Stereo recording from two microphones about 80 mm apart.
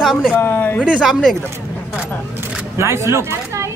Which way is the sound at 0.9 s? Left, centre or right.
Centre.